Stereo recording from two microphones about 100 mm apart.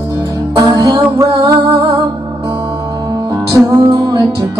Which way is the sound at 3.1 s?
40° right (ahead or behind).